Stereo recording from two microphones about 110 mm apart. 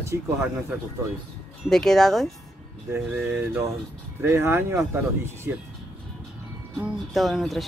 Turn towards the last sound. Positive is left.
turn(degrees=0)  # may be behind; listen again after turning